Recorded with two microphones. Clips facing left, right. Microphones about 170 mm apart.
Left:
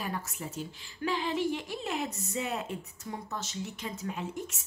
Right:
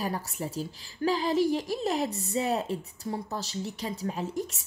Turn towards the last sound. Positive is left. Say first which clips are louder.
# right 5 dB
turn(degrees=-35)  # may be behind; listen again after turning